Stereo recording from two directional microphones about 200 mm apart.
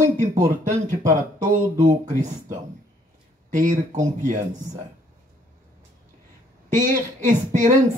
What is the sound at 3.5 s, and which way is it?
Speech, 40° right (ahead or behind).